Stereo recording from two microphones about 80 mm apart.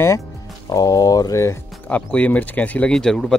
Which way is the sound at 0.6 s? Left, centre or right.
Left.